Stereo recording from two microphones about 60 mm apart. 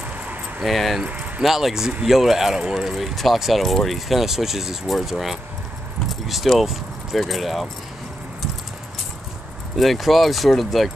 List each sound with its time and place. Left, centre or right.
0.6 s speech: centre
1.0 s speech: right
1.4 s speech: centre
9.8 s speech: centre